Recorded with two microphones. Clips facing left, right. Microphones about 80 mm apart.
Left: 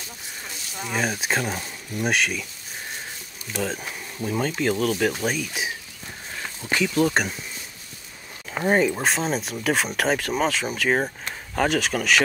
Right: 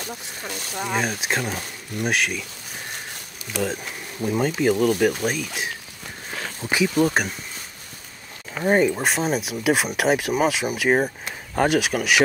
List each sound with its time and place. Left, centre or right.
0.0 s speech: right
0.8 s speech: centre
3.5 s speech: centre
6.6 s speech: centre
8.6 s speech: centre